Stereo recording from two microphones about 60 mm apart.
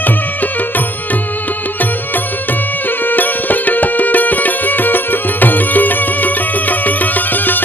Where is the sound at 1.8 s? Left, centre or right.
Left.